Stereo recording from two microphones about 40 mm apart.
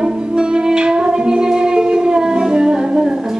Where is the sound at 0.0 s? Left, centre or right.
Right.